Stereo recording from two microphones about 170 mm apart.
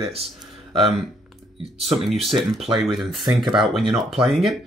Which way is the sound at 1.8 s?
Centre (ahead or behind).